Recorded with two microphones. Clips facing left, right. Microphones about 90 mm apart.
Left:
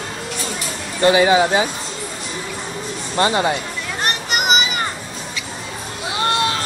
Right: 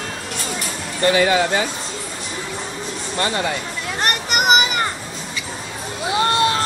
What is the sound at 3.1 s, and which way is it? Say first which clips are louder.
Speech: left 5 dB; 25° left (ahead or behind).